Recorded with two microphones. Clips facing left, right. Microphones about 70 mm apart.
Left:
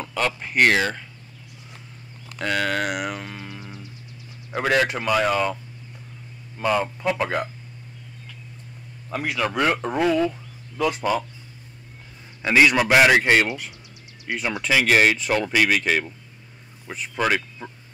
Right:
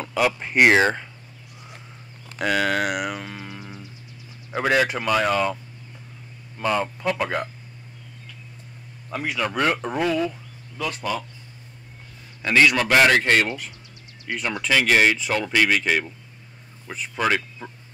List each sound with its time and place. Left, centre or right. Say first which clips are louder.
0.0 s speech: right 3 dB; centre
2.3 s speech: right 2 dB; centre
6.6 s speech: left 1 dB; centre
9.1 s speech: left 1 dB; centre
10.8 s speech: left 5 dB; left
12.4 s speech: left 1 dB; centre